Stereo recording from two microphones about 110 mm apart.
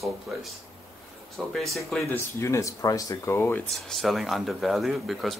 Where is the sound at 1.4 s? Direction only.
5° right (ahead or behind).